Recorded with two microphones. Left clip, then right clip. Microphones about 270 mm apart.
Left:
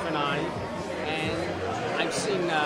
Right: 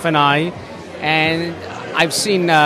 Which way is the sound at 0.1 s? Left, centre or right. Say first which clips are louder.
Right 15 dB; right.